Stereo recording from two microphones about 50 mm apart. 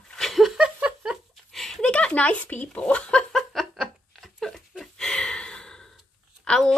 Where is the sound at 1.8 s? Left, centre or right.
Left.